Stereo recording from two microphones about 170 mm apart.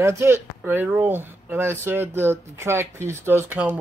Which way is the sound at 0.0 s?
15° right (ahead or behind).